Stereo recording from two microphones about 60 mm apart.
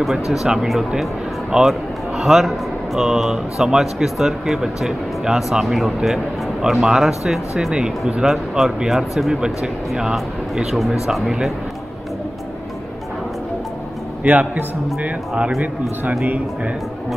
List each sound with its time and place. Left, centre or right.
0.0 s a man's voice: centre
14.2 s speech: right